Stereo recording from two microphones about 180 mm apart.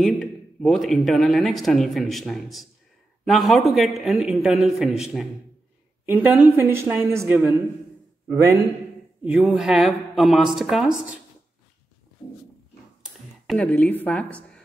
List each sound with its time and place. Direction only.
0.0 s a woman's voice: 5° left (ahead or behind); by 8.5 s 15° right (ahead or behind)
9.2 s speech: 5° right (ahead or behind)
13.0 s a sound: 5° left (ahead or behind)